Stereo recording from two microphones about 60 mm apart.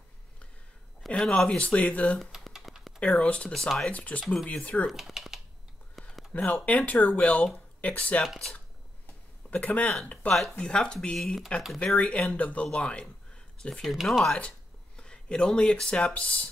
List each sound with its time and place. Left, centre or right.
1.0 s speech: centre
2.3 s a sound: centre
3.0 s speech: centre
4.8 s speech: centre
6.0 s a sound: centre
6.3 s speech: left
8.5 s a sound: left
10.2 s speech: left
10.6 s speech: centre
11.8 s speech: centre
12.8 s a sound: centre
13.8 s speech: centre
15.0 s speech: centre